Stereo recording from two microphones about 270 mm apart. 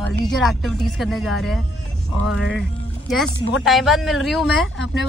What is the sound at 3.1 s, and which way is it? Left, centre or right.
Speech, centre.